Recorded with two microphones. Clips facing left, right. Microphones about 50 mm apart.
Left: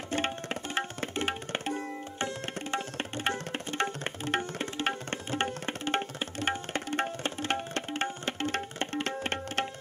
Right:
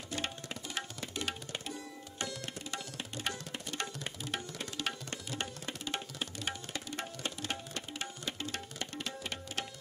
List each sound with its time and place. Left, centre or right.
0.1 s tabla: left